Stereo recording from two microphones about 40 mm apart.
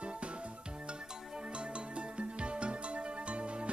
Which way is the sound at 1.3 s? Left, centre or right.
Right.